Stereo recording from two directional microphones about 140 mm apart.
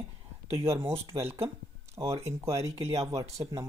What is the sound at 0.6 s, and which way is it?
Speech, 20° right (ahead or behind).